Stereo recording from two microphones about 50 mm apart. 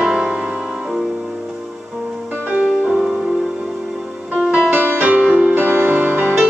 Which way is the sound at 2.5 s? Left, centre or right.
Right.